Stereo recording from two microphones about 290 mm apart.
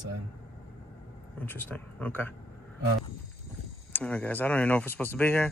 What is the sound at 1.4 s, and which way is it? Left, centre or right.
Speech, centre.